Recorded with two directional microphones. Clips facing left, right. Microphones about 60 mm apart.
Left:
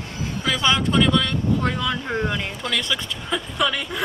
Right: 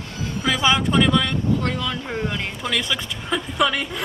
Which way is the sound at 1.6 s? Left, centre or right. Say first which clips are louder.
Left 1 dB; centre.